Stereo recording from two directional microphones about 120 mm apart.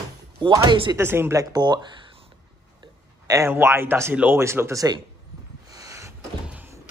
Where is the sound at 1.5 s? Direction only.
35° right (ahead or behind).